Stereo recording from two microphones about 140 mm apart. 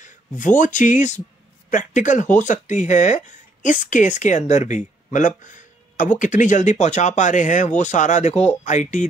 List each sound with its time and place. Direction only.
0.0 s speech: 65° left (ahead or behind)